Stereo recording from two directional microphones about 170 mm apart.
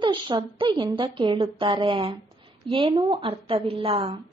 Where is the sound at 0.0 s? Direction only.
30° right (ahead or behind).